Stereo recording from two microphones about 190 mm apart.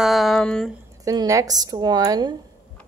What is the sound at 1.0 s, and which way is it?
Speech, 20° right (ahead or behind).